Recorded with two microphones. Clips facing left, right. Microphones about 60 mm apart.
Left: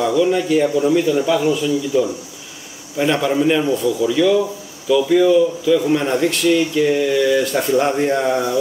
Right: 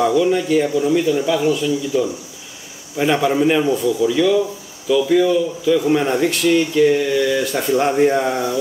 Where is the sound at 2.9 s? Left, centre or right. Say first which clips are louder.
Even; centre.